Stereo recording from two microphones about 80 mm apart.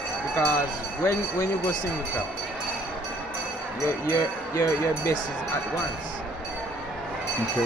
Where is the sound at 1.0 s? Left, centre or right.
Left.